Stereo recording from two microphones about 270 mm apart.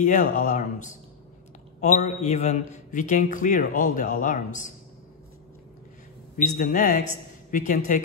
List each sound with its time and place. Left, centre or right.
0.0 s a man's voice: left
6.3 s a man's voice: left